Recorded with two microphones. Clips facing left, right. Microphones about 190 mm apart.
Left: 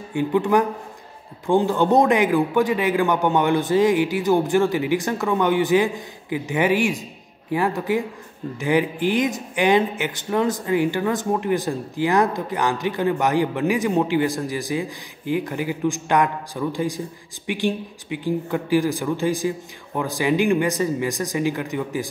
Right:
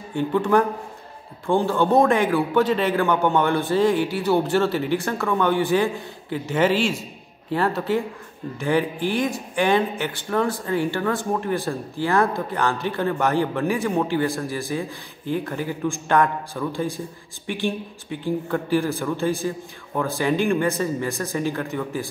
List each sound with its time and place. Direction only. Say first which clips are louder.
0.1 s a man's voice: left 1 dB; 15° left (ahead or behind)